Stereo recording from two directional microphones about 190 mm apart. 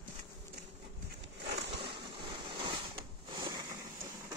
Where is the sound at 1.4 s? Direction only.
65° right (ahead or behind).